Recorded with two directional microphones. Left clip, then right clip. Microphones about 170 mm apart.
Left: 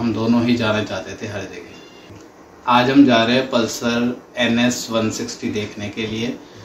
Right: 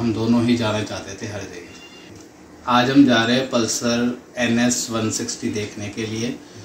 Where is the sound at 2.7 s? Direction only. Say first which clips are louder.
Left 2 dB; 25° left (ahead or behind).